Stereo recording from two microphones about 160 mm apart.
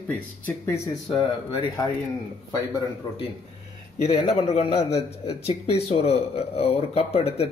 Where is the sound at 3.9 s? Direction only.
40° left (ahead or behind).